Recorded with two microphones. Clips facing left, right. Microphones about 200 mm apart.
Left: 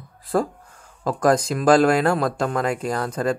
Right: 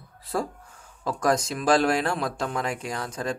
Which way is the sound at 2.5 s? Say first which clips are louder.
Left 6 dB; 55° left (ahead or behind).